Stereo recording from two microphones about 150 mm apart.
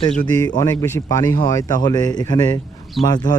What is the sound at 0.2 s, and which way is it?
Speech, 25° left (ahead or behind).